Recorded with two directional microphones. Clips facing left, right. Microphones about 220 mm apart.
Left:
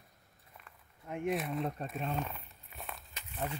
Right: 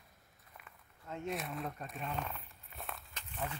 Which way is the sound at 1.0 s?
15° left (ahead or behind).